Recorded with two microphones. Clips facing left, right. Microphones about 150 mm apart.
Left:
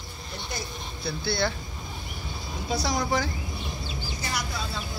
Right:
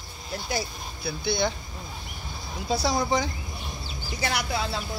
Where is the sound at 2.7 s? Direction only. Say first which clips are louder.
Right 2 dB; 30° right (ahead or behind).